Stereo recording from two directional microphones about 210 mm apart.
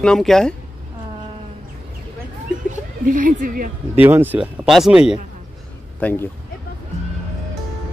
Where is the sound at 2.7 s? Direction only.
40° right (ahead or behind).